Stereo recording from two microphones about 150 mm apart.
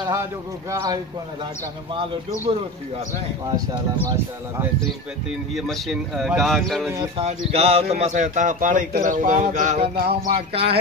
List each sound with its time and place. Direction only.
0.0 s speech: 20° right (ahead or behind)
3.4 s speech: 25° right (ahead or behind)
5.5 s speech: centre (ahead or behind)
7.2 s a man's voice: 45° right (ahead or behind)
9.9 s music: 85° right
10.5 s speech: 40° right (ahead or behind)